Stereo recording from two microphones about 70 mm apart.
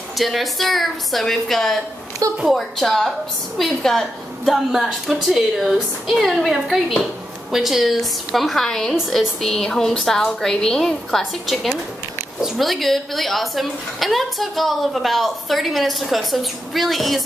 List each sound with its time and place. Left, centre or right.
0.2 s a woman's voice: centre
8.9 s a woman's voice: centre